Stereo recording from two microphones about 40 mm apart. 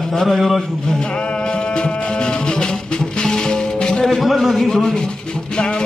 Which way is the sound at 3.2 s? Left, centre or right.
Centre.